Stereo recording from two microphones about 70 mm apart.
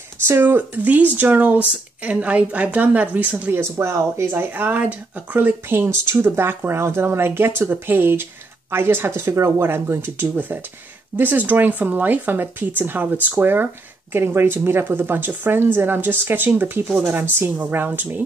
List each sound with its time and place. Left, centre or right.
0.3 s speech: right
3.7 s speech: right